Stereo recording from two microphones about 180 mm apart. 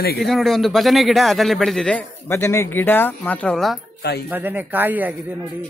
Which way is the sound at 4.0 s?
65° left (ahead or behind).